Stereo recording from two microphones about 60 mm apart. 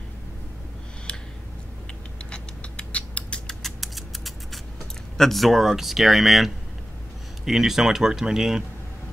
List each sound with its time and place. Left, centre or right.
2.3 s a sound: centre
3.6 s scissors: centre
5.1 s speech: centre